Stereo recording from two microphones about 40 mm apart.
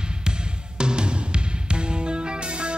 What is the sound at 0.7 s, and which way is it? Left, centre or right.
Music, right.